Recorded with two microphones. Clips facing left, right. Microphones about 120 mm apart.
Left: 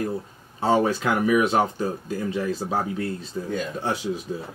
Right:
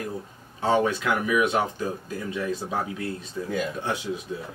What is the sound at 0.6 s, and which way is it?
Speech, 35° left (ahead or behind).